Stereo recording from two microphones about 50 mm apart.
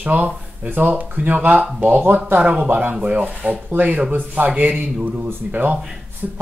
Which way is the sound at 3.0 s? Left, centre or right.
Right.